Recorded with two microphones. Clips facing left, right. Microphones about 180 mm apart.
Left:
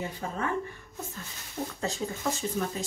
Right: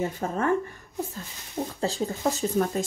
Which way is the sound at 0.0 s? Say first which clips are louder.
Right 6 dB; 45° right (ahead or behind).